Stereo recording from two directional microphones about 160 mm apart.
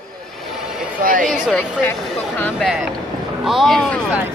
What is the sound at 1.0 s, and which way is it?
Chatter, 60° right (ahead or behind).